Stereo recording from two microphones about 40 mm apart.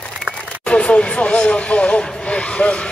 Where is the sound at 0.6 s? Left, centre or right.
Left.